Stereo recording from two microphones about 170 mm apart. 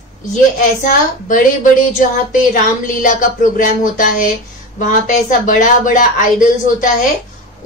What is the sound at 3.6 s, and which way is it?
Speech, 50° left (ahead or behind).